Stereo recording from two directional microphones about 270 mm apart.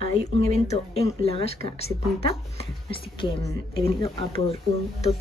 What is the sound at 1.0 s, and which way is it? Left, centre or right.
Speech, left.